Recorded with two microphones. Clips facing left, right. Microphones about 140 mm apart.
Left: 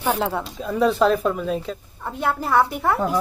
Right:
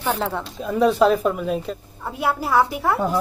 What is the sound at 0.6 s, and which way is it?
Speech, centre (ahead or behind).